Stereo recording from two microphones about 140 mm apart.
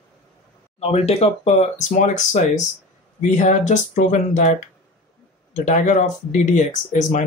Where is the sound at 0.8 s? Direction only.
45° left (ahead or behind).